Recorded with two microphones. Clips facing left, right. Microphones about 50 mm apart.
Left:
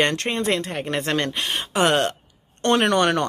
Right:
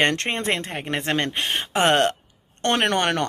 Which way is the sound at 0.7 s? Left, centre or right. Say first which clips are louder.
Left 1 dB; right.